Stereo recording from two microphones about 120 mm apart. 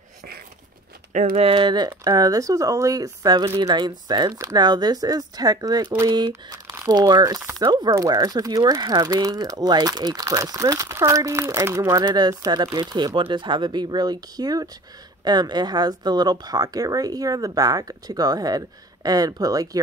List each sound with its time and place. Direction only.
1.4 s speech: 45° right (ahead or behind)
1.9 s speech: 30° right (ahead or behind)
12.0 s speech: 35° right (ahead or behind)